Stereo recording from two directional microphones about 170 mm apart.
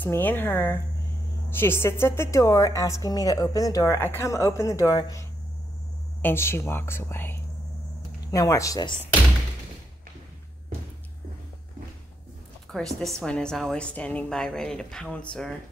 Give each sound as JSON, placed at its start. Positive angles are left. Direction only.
{"t": 0.0, "sound": "a woman's voice", "side_deg": 10}
{"t": 6.2, "sound": "a woman's voice", "side_deg": 15}
{"t": 12.7, "sound": "a woman's voice", "side_deg": 5}